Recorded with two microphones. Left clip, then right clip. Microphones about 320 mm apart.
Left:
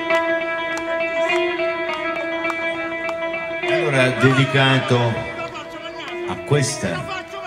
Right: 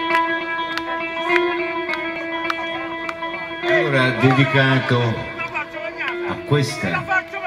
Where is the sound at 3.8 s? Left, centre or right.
Left.